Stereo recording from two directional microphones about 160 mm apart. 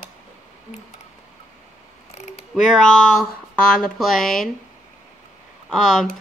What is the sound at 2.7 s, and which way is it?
Speech, 5° left (ahead or behind).